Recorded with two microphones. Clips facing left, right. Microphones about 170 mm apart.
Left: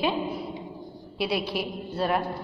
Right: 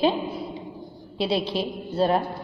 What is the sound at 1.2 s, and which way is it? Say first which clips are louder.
A woman's voice: right 3 dB; 25° right (ahead or behind).